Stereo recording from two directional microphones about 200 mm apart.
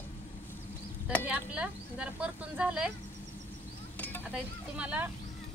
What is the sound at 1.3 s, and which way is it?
Speech, 5° right (ahead or behind).